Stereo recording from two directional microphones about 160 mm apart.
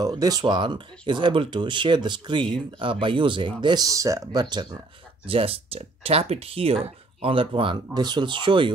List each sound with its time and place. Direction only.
0.0 s speech: 25° right (ahead or behind)